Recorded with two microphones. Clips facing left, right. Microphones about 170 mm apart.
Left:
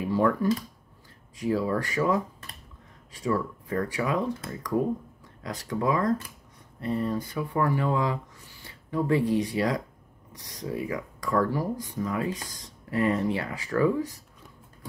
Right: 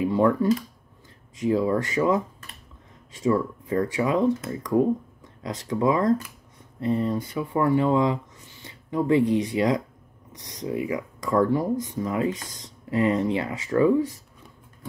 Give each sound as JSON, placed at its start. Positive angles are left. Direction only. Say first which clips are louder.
{"t": 0.0, "sound": "speech", "louder": "right 3 dB", "side_deg": -25}